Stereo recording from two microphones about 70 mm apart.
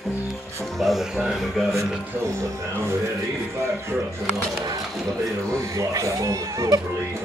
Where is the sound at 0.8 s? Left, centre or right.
Centre.